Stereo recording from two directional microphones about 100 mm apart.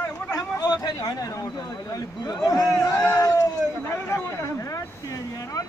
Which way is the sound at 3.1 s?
35° left (ahead or behind).